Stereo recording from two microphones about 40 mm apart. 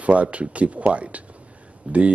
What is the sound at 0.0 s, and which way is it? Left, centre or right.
Speech, right.